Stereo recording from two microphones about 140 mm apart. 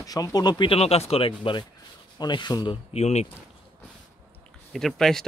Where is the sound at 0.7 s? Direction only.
45° left (ahead or behind).